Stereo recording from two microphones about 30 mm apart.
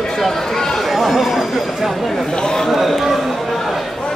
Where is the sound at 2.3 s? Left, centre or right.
Left.